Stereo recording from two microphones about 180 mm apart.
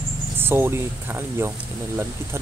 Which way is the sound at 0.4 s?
15° right (ahead or behind).